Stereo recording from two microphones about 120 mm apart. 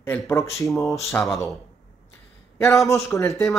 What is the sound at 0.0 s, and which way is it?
Speech, 20° left (ahead or behind).